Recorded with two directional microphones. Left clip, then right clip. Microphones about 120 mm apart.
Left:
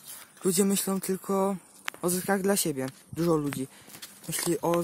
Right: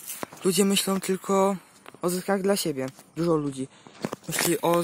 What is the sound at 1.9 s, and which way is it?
Speech, 25° left (ahead or behind).